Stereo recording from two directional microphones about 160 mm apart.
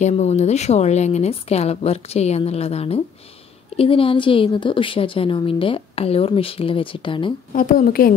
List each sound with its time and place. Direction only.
0.0 s a woman's voice: 45° left (ahead or behind)
7.5 s a woman's voice: 55° left (ahead or behind)